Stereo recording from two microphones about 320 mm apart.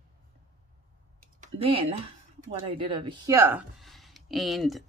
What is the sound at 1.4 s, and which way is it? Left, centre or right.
Speech, centre.